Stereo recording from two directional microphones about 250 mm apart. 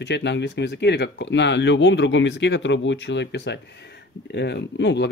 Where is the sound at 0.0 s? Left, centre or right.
Left.